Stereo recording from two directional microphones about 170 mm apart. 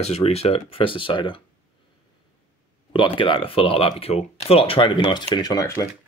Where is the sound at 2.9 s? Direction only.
30° left (ahead or behind).